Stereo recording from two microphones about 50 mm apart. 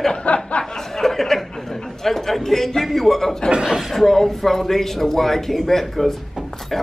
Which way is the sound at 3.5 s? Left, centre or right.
Centre.